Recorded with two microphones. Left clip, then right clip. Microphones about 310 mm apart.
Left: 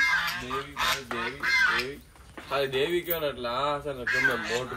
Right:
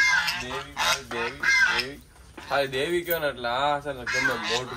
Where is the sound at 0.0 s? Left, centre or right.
Right.